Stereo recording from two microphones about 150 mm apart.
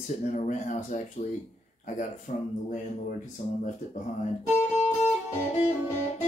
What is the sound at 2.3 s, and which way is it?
Speech, 55° left (ahead or behind).